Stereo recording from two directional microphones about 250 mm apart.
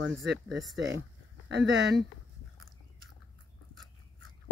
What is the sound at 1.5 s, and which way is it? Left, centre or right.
Speech, right.